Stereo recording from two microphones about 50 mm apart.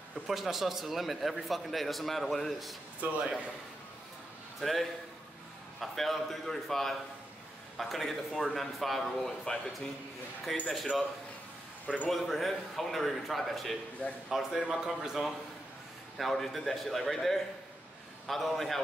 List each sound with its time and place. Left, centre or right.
0.3 s a man's voice: centre
3.0 s speech: right
4.6 s a man's voice: centre
12.1 s a man's voice: centre